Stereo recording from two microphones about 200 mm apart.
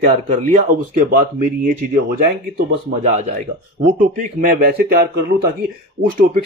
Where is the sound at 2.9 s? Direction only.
65° right (ahead or behind).